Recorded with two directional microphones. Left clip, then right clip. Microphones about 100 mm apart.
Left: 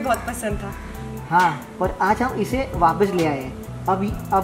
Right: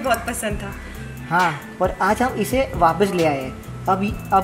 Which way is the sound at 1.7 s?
30° right (ahead or behind).